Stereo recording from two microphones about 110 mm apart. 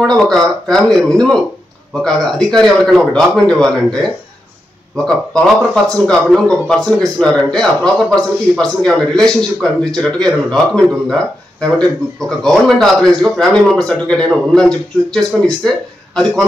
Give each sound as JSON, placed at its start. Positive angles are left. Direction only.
{"t": 0.0, "sound": "a man's voice", "side_deg": 5}